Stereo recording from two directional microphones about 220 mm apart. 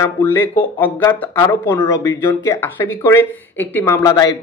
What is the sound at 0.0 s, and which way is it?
Speech, 10° left (ahead or behind).